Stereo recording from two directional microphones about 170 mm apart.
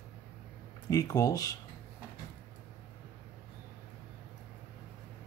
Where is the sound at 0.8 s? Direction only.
20° left (ahead or behind).